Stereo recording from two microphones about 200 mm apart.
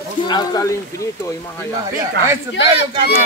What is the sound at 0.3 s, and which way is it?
Speech, 20° left (ahead or behind).